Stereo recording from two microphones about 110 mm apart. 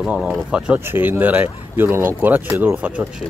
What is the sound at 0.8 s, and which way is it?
Speech, 20° right (ahead or behind).